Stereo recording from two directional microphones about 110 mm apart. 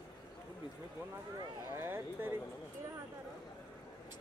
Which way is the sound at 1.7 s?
20° right (ahead or behind).